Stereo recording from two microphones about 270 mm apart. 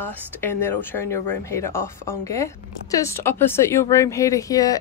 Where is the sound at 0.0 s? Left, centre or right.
Centre.